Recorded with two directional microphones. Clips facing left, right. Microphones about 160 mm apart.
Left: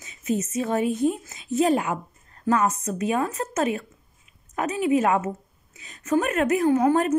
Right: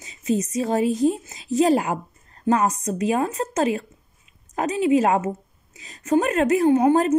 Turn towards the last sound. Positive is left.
turn(degrees=-30)  # may be behind; listen again after turning